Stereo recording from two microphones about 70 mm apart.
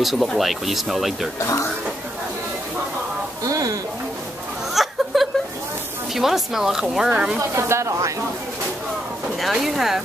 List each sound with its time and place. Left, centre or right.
0.0 s speech: centre
1.4 s speech: left
3.4 s speech: right
4.7 s chuckle: centre
6.1 s speech: centre
7.5 s speech: right
9.4 s speech: centre